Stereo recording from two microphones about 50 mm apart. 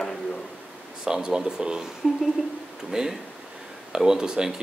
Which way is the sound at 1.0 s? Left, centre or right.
Centre.